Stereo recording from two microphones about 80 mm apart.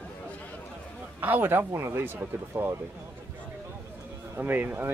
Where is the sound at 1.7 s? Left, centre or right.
Right.